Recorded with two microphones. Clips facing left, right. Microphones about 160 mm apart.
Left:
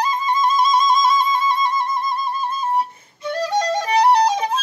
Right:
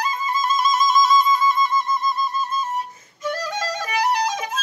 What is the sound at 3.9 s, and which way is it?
Music, 30° left (ahead or behind).